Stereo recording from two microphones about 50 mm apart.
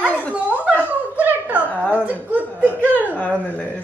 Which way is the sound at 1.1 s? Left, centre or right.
Right.